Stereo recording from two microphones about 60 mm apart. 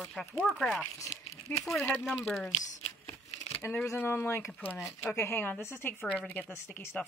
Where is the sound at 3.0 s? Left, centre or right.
Left.